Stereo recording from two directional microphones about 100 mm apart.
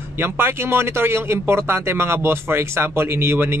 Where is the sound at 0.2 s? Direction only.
25° right (ahead or behind).